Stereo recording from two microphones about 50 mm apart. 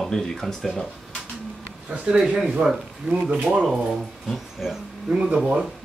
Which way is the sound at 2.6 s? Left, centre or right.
Right.